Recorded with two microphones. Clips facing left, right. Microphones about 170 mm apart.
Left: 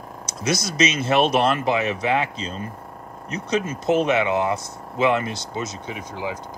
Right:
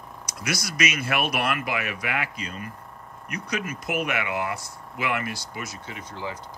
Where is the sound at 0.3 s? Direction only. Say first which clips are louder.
Left 6 dB; 25° left (ahead or behind).